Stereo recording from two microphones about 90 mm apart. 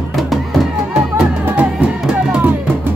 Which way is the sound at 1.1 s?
10° right (ahead or behind).